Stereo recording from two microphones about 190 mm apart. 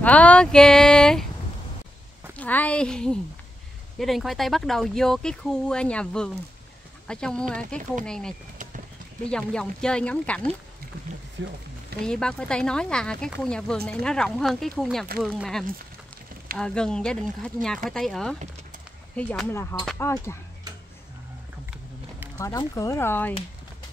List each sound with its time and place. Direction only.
0.0 s speech: 5° left (ahead or behind)
2.3 s speech: 10° left (ahead or behind)
11.4 s speech: 70° right (ahead or behind)
12.0 s speech: 5° left (ahead or behind)
22.4 s speech: 15° left (ahead or behind)